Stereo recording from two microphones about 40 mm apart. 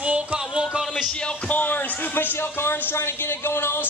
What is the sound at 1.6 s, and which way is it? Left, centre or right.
Speech, left.